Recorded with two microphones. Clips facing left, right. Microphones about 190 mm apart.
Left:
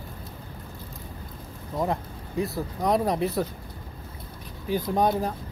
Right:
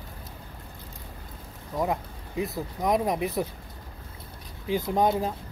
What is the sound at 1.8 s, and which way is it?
Speech, 15° right (ahead or behind).